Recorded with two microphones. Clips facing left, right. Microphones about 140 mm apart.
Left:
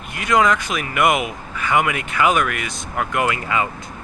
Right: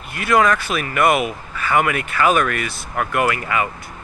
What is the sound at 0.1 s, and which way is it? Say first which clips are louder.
Speech: right 1 dB; 20° left (ahead or behind).